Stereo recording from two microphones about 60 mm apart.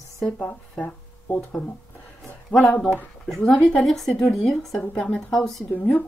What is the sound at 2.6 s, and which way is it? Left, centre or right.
Speech, left.